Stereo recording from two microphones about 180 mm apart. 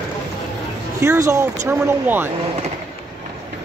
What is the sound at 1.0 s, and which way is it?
Speech, 15° right (ahead or behind).